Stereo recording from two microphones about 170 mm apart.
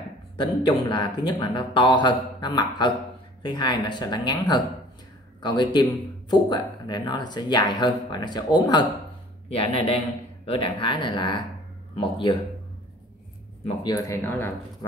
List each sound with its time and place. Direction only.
0.4 s a man's voice: 25° left (ahead or behind)
13.8 s speech: 20° left (ahead or behind)